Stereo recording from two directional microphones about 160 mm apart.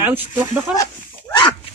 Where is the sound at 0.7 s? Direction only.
25° left (ahead or behind).